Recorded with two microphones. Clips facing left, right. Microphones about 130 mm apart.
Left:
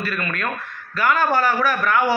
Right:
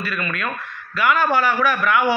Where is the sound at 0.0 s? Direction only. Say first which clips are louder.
Even; 45° left (ahead or behind).